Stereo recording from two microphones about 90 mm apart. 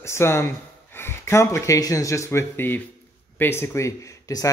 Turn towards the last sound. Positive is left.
turn(degrees=40)  # may be behind; listen again after turning